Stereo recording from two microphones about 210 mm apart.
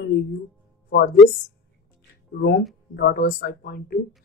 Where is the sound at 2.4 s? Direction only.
50° left (ahead or behind).